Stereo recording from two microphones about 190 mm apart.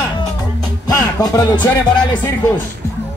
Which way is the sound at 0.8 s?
20° left (ahead or behind).